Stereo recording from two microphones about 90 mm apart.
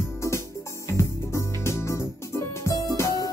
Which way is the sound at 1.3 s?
35° left (ahead or behind).